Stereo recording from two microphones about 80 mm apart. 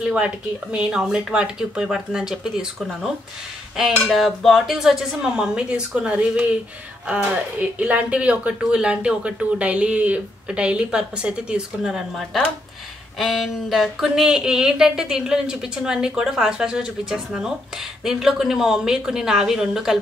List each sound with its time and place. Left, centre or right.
0.0 s speech: centre
4.0 s dishes: centre
7.8 s speech: centre
18.0 s dishes: centre